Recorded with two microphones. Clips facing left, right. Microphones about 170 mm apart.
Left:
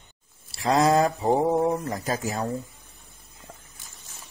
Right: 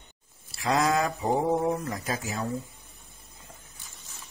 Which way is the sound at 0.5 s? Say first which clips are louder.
Left 4 dB; 35° left (ahead or behind).